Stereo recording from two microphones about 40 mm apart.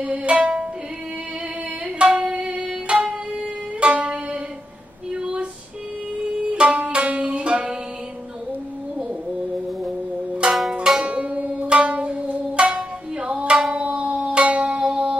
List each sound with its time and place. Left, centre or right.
0.0 s music: right
2.0 s music: right
5.1 s a sound: right
6.5 s music: right
10.4 s zither: right
13.6 s music: centre
13.8 s a sound: right
14.3 s zither: right
14.8 s music: right